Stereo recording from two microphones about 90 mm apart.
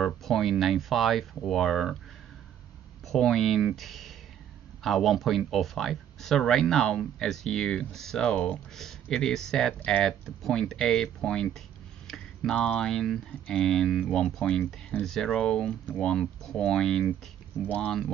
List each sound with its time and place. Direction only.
0.0 s speech: centre (ahead or behind)
3.1 s speech: centre (ahead or behind)
17.6 s speech: 20° left (ahead or behind)